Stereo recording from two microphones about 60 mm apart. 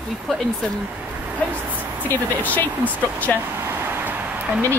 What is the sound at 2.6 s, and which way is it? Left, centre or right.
Speech, left.